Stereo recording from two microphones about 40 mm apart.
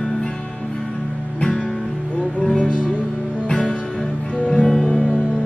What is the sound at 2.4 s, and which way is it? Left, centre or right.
Music, left.